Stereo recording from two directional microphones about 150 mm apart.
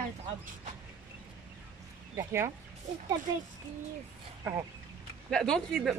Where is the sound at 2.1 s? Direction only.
20° right (ahead or behind).